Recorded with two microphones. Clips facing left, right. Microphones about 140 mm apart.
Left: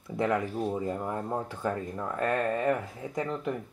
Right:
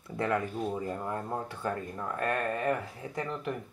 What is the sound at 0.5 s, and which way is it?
Speech, 25° left (ahead or behind).